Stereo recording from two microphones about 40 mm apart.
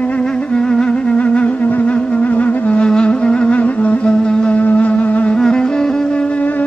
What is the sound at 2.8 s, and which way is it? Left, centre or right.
Music, left.